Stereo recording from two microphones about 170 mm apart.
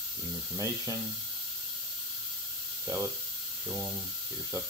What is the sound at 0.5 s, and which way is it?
Speech, 20° right (ahead or behind).